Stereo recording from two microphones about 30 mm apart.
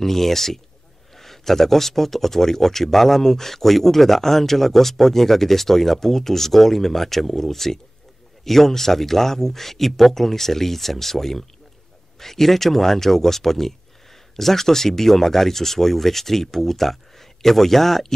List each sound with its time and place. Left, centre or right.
0.0 s speech: centre